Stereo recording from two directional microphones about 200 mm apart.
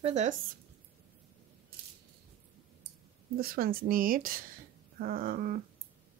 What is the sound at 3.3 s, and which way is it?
A woman's voice, 50° right (ahead or behind).